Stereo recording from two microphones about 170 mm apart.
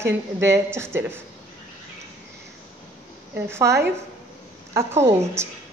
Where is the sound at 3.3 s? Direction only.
15° right (ahead or behind).